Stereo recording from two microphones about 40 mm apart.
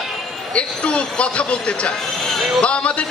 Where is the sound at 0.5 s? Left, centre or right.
Left.